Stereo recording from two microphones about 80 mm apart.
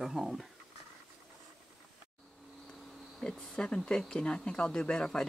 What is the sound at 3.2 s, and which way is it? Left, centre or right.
Speech, centre.